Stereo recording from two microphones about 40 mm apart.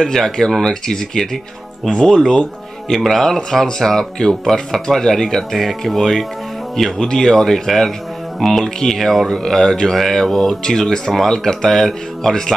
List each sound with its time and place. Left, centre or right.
0.0 s speech: centre